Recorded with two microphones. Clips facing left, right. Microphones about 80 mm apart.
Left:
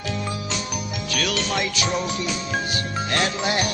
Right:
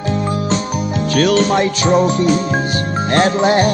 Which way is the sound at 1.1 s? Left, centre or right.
Right.